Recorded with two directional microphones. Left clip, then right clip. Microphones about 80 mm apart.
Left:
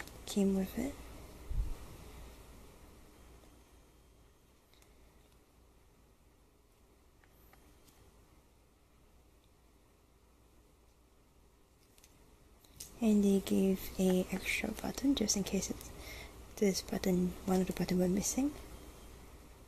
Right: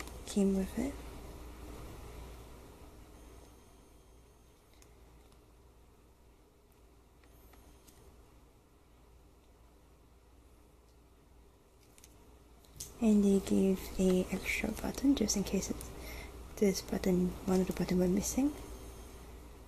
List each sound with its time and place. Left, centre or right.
0.2 s speech: left
13.0 s speech: left
17.5 s speech: left
17.7 s speech: left